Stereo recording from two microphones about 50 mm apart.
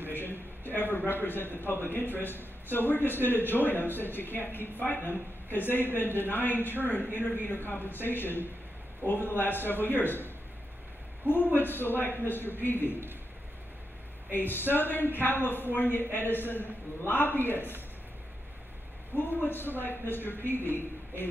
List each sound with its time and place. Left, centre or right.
0.1 s a man's voice: left
14.3 s a man's voice: left
19.1 s a man's voice: left